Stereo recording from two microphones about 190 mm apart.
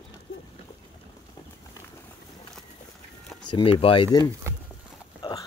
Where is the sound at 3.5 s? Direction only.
25° left (ahead or behind).